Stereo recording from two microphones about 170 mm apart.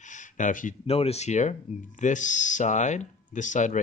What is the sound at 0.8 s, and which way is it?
Speech, 35° left (ahead or behind).